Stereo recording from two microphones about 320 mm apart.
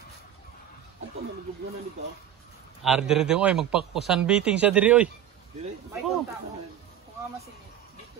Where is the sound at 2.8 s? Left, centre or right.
Centre.